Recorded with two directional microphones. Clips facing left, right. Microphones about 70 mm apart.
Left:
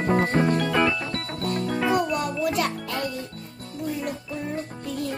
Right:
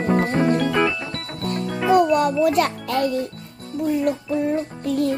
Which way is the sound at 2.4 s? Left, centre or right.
Right.